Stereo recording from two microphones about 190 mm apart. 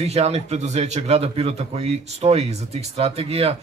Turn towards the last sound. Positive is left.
turn(degrees=-30)  # may be behind; listen again after turning